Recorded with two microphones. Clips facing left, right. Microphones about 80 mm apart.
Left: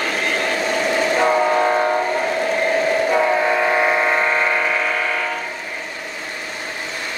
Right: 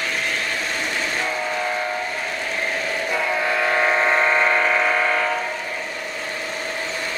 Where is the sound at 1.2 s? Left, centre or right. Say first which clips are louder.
Left 9 dB; left.